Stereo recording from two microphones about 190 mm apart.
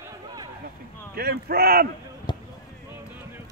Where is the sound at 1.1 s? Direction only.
55° right (ahead or behind).